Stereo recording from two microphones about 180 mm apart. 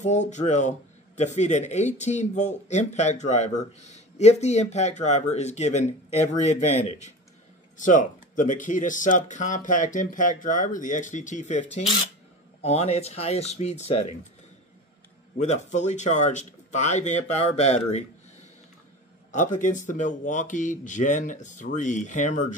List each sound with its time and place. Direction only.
0.0 s a man's voice: 40° left (ahead or behind)
15.3 s a man's voice: 40° left (ahead or behind)
19.3 s speech: 45° left (ahead or behind)